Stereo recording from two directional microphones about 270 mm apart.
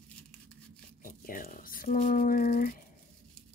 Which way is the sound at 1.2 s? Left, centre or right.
Left.